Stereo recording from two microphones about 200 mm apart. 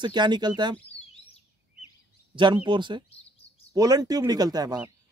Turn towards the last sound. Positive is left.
turn(degrees=-20)  # may be behind; listen again after turning